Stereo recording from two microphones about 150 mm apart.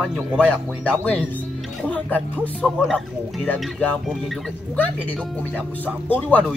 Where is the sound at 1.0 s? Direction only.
10° left (ahead or behind).